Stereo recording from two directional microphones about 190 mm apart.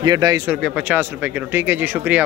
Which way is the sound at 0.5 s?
Centre (ahead or behind).